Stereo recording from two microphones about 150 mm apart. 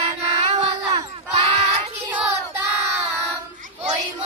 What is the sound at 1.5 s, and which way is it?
Child singing, 40° right (ahead or behind).